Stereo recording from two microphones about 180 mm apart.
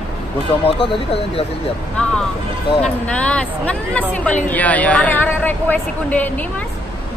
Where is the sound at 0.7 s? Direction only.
30° left (ahead or behind).